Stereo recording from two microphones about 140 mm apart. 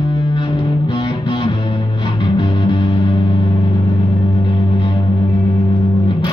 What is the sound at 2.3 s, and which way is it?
Music, 35° left (ahead or behind).